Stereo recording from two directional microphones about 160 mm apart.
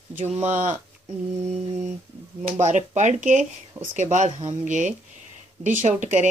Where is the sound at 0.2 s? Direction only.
45° right (ahead or behind).